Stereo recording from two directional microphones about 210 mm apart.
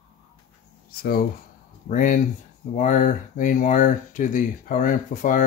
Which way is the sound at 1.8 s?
40° left (ahead or behind).